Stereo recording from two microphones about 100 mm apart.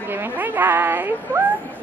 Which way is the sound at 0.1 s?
20° right (ahead or behind).